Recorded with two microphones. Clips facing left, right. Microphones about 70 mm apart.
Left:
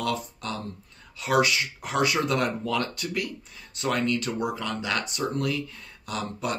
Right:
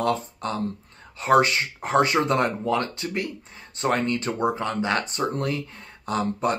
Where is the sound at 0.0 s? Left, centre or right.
Right.